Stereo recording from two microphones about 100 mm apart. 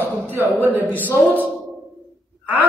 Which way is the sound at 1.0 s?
15° left (ahead or behind).